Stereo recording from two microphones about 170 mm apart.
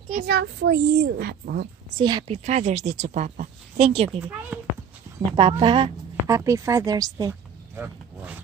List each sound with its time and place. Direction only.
0.3 s a child's voice: 90° right; by 1.7 s 65° right (ahead or behind)
2.0 s a woman's voice: 30° right (ahead or behind)
4.2 s speech: 10° right (ahead or behind)
5.3 s a woman's voice: 30° right (ahead or behind)
6.2 s speech: 15° right (ahead or behind)